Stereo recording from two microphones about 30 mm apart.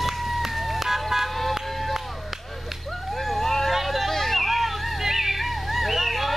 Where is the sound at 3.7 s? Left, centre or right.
Centre.